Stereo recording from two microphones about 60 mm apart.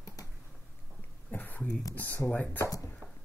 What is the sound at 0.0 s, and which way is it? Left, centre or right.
Tick-tock, left.